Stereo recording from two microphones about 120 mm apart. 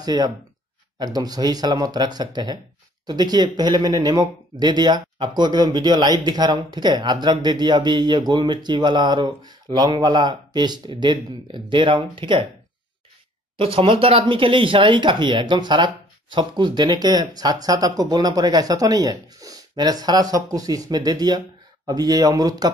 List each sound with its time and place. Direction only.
0.0 s speech: 35° right (ahead or behind)
13.6 s speech: 50° right (ahead or behind); by 22.7 s 30° right (ahead or behind)